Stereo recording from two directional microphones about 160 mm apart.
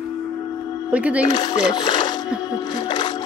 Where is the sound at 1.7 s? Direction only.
30° left (ahead or behind).